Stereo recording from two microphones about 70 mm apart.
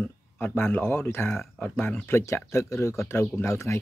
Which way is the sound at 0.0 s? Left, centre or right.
Left.